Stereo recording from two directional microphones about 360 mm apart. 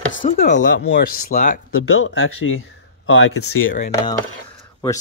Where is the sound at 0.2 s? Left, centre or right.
Left.